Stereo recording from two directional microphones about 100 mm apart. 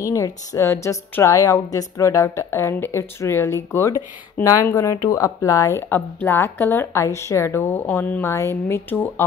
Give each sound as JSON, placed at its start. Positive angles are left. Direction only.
{"t": 0.0, "sound": "speech", "side_deg": 30}